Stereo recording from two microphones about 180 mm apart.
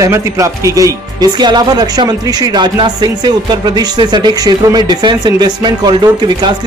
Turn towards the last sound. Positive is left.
turn(degrees=-25)  # may be behind; listen again after turning